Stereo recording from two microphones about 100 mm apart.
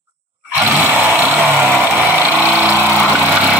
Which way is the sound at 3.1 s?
15° right (ahead or behind).